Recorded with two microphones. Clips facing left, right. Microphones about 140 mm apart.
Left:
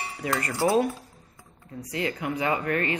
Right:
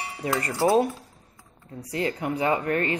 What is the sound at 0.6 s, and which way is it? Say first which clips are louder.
Speech: right 2 dB; 35° right (ahead or behind).